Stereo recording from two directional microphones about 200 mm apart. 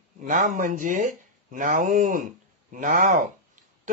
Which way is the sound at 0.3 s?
40° right (ahead or behind).